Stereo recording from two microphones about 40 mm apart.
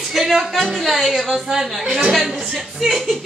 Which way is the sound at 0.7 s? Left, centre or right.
Centre.